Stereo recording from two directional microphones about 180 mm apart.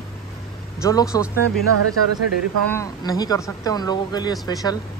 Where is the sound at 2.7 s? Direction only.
20° left (ahead or behind).